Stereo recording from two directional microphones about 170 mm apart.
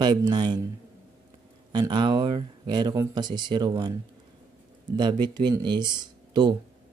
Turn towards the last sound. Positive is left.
turn(degrees=-25)  # may be behind; listen again after turning